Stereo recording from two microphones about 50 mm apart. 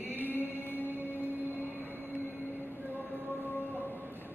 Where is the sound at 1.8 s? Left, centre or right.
Right.